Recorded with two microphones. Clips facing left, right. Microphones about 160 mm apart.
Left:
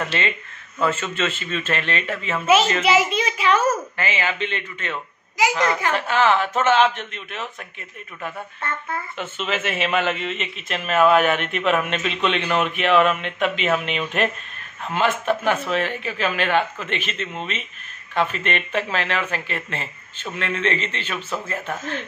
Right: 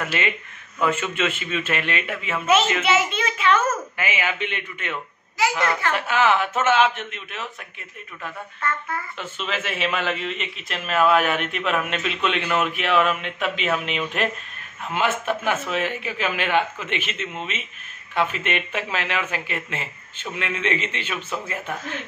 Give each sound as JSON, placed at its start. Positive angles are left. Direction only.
{"t": 0.0, "sound": "a man's voice", "side_deg": -5}
{"t": 2.3, "sound": "a child's voice", "side_deg": 10}
{"t": 2.8, "sound": "a child's voice", "side_deg": 35}
{"t": 3.3, "sound": "a child's voice", "side_deg": 10}
{"t": 3.9, "sound": "a man's voice", "side_deg": -10}
{"t": 5.6, "sound": "a child's voice", "side_deg": 20}
{"t": 5.9, "sound": "a man's voice", "side_deg": -10}
{"t": 8.5, "sound": "speech", "side_deg": 25}
{"t": 9.2, "sound": "a man's voice", "side_deg": 0}